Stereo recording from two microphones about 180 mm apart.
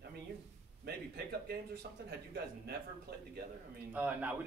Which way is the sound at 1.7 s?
65° right (ahead or behind).